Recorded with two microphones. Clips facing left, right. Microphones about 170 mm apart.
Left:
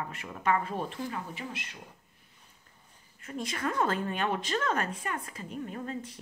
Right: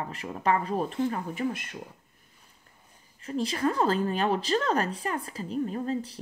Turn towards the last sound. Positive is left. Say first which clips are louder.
# right 7 dB
turn(degrees=-35)  # may be behind; listen again after turning